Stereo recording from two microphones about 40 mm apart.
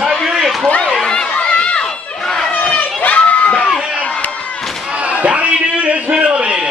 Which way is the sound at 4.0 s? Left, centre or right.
Left.